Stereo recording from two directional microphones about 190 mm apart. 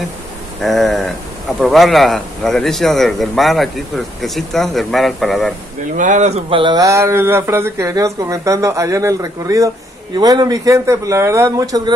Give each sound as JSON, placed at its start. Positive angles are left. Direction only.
{"t": 0.6, "sound": "a man's voice", "side_deg": 0}
{"t": 5.9, "sound": "speech", "side_deg": -40}